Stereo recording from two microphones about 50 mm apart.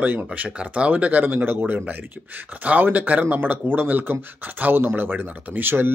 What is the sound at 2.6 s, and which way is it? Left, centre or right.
Speech, right.